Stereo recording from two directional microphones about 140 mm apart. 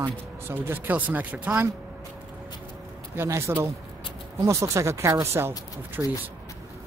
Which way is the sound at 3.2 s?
20° right (ahead or behind).